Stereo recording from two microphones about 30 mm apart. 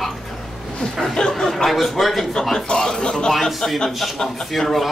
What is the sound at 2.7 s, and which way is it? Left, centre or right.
Speech, left.